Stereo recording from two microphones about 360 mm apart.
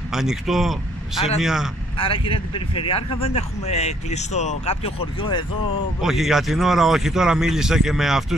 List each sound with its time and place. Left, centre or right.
0.1 s speech: centre
2.0 s speech: centre
5.9 s speech: centre